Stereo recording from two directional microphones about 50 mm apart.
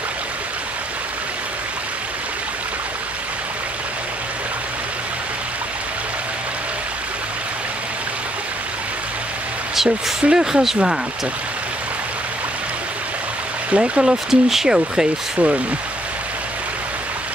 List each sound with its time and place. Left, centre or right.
10.2 s speech: centre
13.7 s speech: right
14.3 s speech: centre
15.3 s speech: right